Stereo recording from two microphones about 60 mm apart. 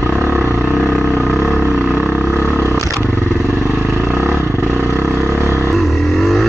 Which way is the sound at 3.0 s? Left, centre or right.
Left.